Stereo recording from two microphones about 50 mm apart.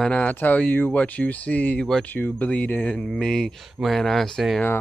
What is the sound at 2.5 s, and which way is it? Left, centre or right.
Speech, left.